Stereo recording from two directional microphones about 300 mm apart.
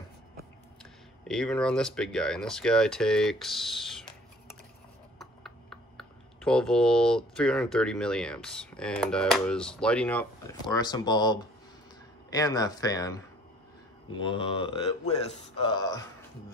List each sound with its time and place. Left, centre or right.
1.2 s speech: centre
5.2 s speech: centre